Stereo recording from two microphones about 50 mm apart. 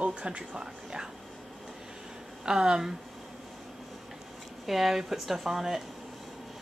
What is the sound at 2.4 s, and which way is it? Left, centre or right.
Speech, centre.